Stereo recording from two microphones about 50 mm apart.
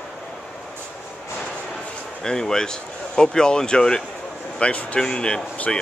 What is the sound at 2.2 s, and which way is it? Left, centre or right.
Speech, centre.